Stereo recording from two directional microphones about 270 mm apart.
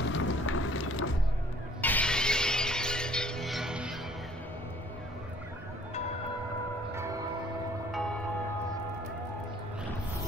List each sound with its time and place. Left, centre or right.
0.0 s a sound: left
1.8 s music: centre
6.9 s music: centre
7.9 s music: centre